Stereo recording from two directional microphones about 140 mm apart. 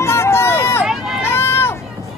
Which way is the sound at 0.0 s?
20° left (ahead or behind).